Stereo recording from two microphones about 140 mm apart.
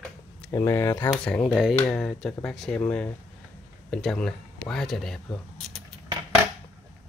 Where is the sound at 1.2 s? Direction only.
10° left (ahead or behind).